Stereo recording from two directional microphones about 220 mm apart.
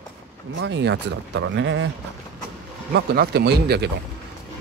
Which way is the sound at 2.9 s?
50° right (ahead or behind).